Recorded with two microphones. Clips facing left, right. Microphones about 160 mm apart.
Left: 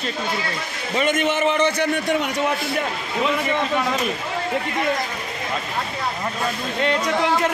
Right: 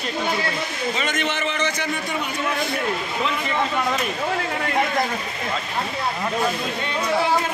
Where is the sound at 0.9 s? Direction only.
50° left (ahead or behind).